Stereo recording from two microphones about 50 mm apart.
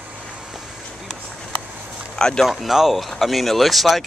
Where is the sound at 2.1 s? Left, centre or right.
Centre.